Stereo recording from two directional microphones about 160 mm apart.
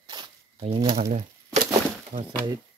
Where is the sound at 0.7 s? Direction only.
35° right (ahead or behind).